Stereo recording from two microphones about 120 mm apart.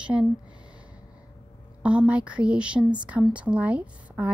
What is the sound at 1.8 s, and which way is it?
A woman's voice, 10° right (ahead or behind).